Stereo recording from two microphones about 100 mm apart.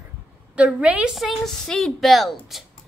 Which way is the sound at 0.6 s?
15° right (ahead or behind).